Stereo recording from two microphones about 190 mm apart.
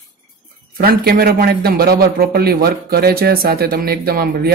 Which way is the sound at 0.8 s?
50° right (ahead or behind).